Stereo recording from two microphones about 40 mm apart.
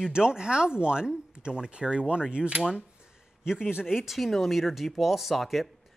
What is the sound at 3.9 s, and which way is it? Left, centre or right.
A woman's voice, centre.